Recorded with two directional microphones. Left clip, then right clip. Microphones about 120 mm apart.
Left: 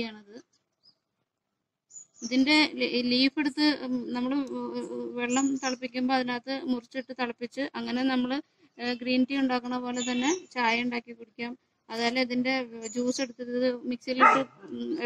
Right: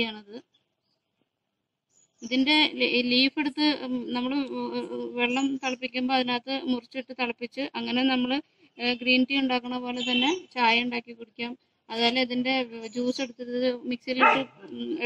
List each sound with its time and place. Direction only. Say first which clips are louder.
0.0 s speech: right 7 dB; 15° left (ahead or behind)
2.2 s a woman's voice: right 1 dB; 10° left (ahead or behind)
14.2 s speech: left 1 dB; 25° left (ahead or behind)